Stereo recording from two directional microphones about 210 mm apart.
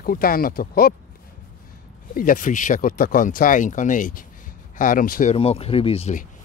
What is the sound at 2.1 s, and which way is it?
Speech, 40° left (ahead or behind).